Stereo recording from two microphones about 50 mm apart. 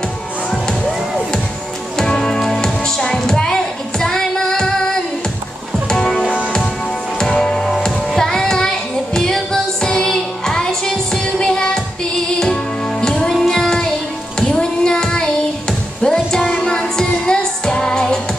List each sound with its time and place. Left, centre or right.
0.5 s music: centre
2.0 s music: centre
13.3 s child singing: centre
16.1 s music: centre